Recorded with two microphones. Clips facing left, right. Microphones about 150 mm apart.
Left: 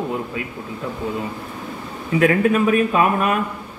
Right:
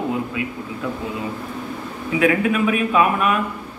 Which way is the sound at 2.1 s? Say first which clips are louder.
Left 2 dB; 40° left (ahead or behind).